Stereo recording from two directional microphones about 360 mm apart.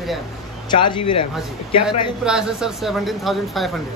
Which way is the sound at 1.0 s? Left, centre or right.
Left.